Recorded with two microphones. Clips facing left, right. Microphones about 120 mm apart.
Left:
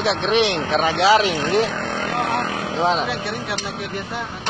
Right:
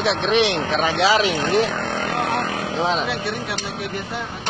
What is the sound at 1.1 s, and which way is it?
Speech, centre (ahead or behind).